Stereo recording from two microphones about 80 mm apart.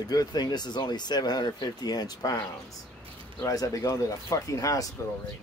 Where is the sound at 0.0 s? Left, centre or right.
Left.